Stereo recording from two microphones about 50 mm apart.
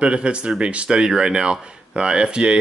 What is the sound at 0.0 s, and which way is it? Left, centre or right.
Speech, right.